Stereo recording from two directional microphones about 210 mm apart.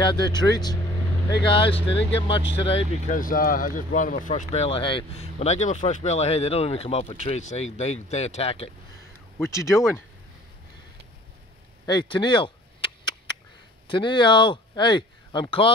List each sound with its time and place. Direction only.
0.0 s speech: 20° left (ahead or behind)
9.4 s speech: 15° left (ahead or behind)
11.8 s a sound: 20° left (ahead or behind)
13.8 s speech: 20° left (ahead or behind)